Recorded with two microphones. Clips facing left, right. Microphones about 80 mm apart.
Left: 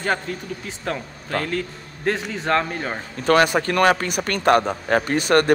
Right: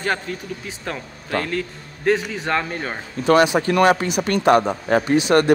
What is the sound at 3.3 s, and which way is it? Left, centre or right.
Speech, left.